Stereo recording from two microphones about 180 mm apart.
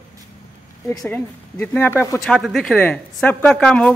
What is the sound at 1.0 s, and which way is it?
Speech, 10° left (ahead or behind).